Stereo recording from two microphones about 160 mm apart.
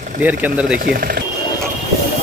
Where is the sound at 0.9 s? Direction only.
70° right (ahead or behind).